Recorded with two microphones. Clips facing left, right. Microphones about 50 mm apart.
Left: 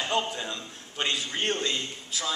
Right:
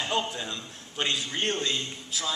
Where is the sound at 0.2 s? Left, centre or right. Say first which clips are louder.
Left 1 dB; centre.